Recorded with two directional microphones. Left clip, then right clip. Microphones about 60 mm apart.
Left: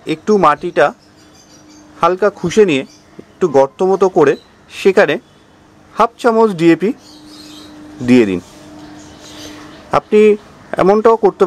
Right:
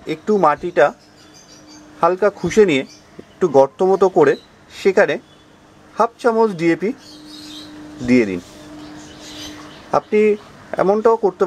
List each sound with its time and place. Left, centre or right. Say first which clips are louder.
0.0 s speech: left 4 dB; centre
0.6 s speech: left 2 dB; centre
2.0 s speech: left 3 dB; centre
2.3 s speech: left 2 dB; centre
4.6 s speech: left 4 dB; left
6.0 s speech: left 4 dB; left
8.0 s speech: left 5 dB; left
10.0 s speech: left 8 dB; left